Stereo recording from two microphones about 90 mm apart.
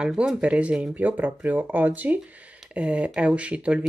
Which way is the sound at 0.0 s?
10° right (ahead or behind).